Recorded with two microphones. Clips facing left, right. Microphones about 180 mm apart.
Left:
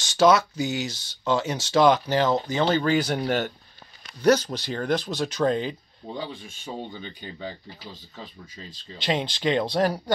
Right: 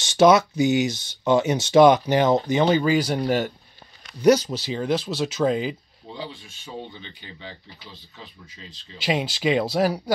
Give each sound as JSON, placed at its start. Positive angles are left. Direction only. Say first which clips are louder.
{"t": 0.0, "sound": "speech", "louder": "right 3 dB", "side_deg": -20}
{"t": 2.8, "sound": "speech", "louder": "right 2 dB", "side_deg": -5}
{"t": 6.1, "sound": "speech", "louder": "left 1 dB", "side_deg": 50}
{"t": 9.0, "sound": "speech", "louder": "right 2 dB", "side_deg": -10}